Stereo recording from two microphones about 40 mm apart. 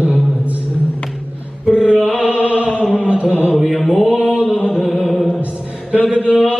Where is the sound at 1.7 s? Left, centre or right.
Right.